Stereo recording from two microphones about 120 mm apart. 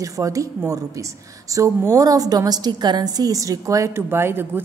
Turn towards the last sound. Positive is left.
turn(degrees=-20)  # may be behind; listen again after turning